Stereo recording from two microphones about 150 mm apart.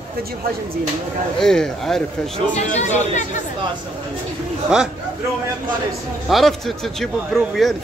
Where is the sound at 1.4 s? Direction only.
5° left (ahead or behind).